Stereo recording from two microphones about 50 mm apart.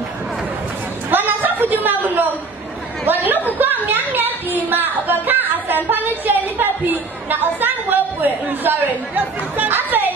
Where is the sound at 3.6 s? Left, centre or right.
Right.